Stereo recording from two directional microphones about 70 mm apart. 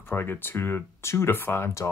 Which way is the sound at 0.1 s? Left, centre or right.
Left.